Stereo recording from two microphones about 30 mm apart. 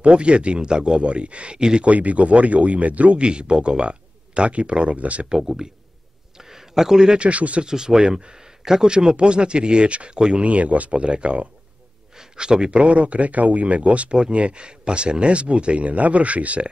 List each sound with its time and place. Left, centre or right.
0.0 s speech: right
1.9 s speech: right
3.2 s speech: right
6.3 s a sound: centre
7.2 s speech: right
7.6 s speech: right
8.3 s a sound: centre
8.8 s speech: right
10.1 s speech: right
10.4 s speech: right
12.4 s speech: right
12.7 s speech: right